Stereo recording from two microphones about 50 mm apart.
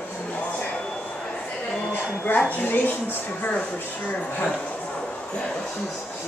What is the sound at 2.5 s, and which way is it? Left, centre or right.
Speech, left.